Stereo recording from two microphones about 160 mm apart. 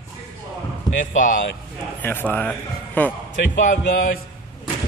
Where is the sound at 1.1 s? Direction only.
55° left (ahead or behind).